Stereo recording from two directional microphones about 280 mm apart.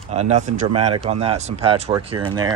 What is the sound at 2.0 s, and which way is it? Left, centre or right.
Speech, right.